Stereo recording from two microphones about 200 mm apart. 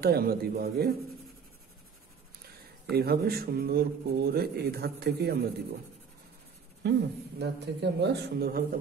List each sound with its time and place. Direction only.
0.0 s speech: 50° right (ahead or behind)
2.9 s speech: 50° right (ahead or behind)
6.8 s a man's voice: 55° right (ahead or behind)